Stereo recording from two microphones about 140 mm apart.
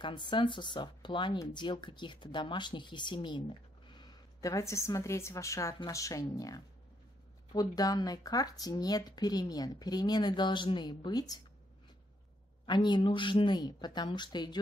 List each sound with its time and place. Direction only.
0.0 s speech: 35° left (ahead or behind)
12.6 s speech: 30° left (ahead or behind)